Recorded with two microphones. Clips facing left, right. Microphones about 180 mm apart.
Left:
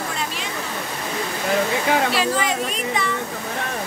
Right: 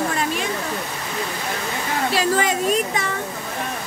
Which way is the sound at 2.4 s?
45° right (ahead or behind).